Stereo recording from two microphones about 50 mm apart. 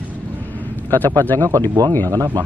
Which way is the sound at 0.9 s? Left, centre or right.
Left.